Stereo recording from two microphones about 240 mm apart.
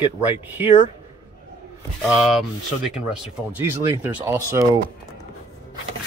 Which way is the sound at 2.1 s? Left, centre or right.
Centre.